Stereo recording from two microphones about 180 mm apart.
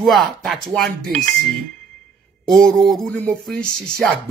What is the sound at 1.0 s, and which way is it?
Speech, 50° right (ahead or behind).